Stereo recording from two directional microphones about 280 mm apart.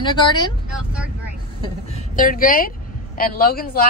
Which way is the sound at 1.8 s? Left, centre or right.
Left.